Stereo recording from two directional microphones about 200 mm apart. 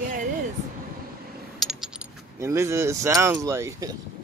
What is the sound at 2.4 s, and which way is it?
Speech, 10° right (ahead or behind).